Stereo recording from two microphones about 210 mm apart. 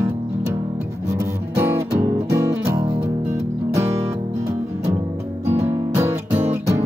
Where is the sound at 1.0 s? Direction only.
15° right (ahead or behind).